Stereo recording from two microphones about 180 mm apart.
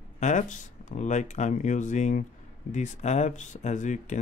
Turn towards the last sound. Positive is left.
turn(degrees=45)  # may be behind; listen again after turning